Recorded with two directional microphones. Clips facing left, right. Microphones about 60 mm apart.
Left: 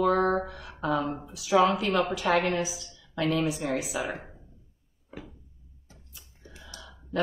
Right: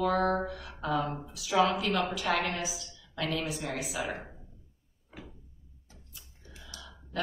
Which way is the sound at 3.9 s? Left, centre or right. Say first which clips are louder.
Left 3 dB; centre.